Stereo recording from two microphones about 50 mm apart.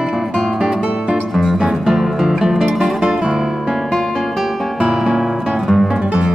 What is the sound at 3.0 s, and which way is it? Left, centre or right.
Guitar, centre.